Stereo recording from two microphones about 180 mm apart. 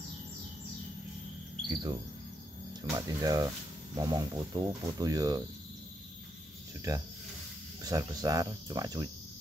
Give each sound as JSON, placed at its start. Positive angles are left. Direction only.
{"t": 1.7, "sound": "speech", "side_deg": -25}
{"t": 7.8, "sound": "speech", "side_deg": -20}